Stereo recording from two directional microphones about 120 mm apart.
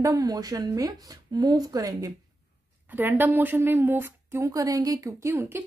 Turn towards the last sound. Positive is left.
turn(degrees=-20)  # may be behind; listen again after turning